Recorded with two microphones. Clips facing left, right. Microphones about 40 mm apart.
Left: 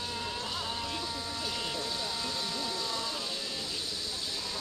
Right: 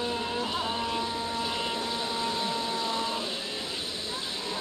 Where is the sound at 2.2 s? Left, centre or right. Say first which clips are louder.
Right 6 dB; right.